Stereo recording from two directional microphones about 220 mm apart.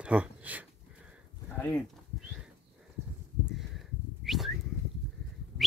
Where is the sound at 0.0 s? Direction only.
5° right (ahead or behind).